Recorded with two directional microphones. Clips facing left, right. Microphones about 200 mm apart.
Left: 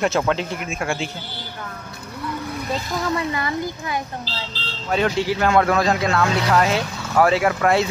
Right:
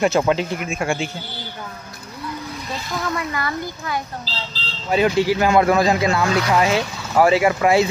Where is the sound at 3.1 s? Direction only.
25° left (ahead or behind).